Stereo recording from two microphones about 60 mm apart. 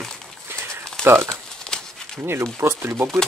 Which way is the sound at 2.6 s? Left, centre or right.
Right.